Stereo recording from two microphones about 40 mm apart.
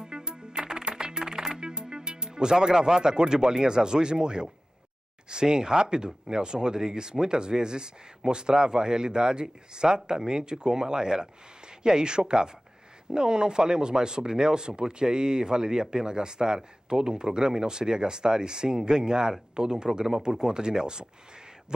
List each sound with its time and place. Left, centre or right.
0.0 s music: centre
5.3 s speech: centre